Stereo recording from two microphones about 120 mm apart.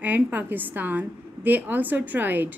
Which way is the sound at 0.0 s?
15° right (ahead or behind).